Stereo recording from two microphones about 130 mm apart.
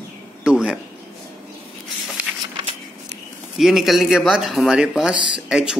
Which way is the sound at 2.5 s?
55° right (ahead or behind).